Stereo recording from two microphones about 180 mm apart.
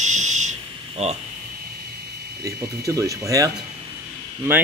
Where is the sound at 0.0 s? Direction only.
40° right (ahead or behind).